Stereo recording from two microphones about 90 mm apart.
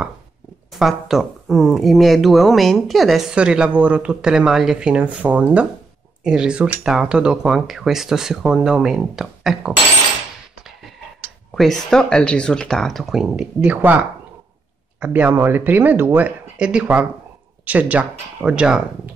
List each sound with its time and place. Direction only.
0.7 s speech: centre (ahead or behind)
11.5 s speech: 5° left (ahead or behind)
15.0 s speech: 15° right (ahead or behind)